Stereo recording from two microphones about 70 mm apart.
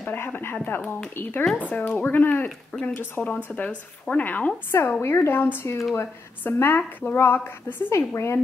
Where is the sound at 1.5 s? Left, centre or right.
Centre.